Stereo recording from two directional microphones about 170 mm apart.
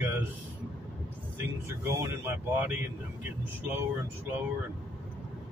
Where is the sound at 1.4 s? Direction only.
15° right (ahead or behind).